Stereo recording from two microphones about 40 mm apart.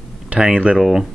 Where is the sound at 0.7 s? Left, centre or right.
Centre.